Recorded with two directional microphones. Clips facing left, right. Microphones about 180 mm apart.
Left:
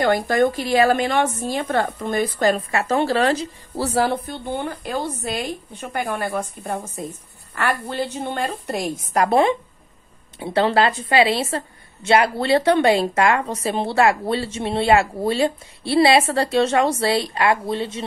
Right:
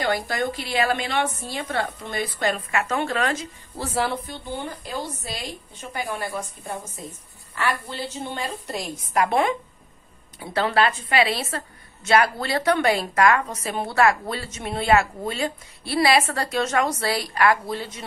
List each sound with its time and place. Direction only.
0.0 s a woman's voice: 45° left (ahead or behind)
9.1 s a woman's voice: 40° left (ahead or behind)